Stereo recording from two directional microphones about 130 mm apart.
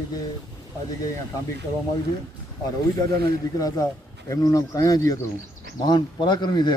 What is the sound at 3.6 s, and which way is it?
A man's voice, 30° left (ahead or behind).